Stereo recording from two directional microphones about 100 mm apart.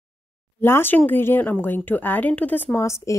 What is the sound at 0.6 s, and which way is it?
Speech, 25° left (ahead or behind).